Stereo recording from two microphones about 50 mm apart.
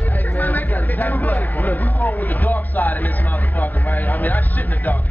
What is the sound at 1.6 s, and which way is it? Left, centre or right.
Speech, left.